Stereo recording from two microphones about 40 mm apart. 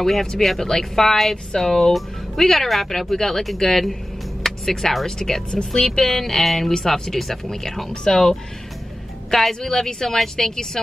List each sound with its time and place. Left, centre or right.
0.0 s speech: centre